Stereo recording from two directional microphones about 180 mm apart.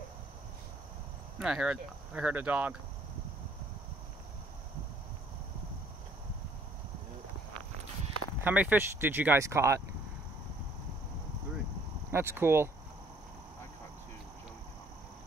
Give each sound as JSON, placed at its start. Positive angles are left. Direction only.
{"t": 1.4, "sound": "speech", "side_deg": -5}
{"t": 8.5, "sound": "speech", "side_deg": -10}
{"t": 12.1, "sound": "speech", "side_deg": -15}